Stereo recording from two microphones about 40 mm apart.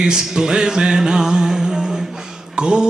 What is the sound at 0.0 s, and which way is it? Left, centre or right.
Music, centre.